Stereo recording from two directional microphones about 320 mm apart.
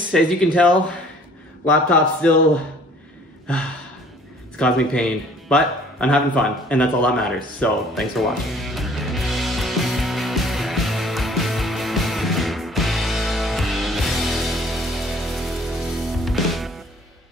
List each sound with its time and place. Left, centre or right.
0.1 s speech: centre
4.6 s speech: centre
5.5 s a sound: centre